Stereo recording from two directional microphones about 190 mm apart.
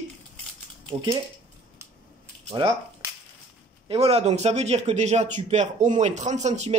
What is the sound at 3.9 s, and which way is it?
A man's voice, 30° right (ahead or behind).